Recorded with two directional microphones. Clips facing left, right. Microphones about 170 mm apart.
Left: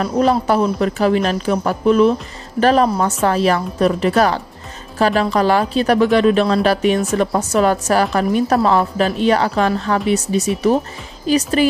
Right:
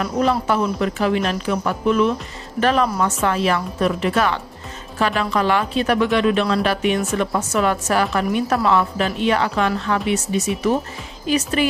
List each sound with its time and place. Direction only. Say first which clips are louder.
0.0 s speech: left 4 dB; 35° left (ahead or behind)